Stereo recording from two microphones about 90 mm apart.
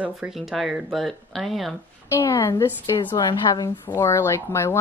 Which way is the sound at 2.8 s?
60° left (ahead or behind).